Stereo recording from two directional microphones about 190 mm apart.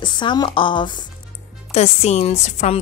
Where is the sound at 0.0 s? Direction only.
25° left (ahead or behind).